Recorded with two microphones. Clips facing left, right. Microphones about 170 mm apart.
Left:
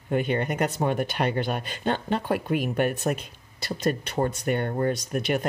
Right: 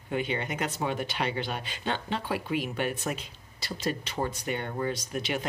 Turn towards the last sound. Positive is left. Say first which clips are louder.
# left 6 dB
turn(degrees=50)  # may be behind; listen again after turning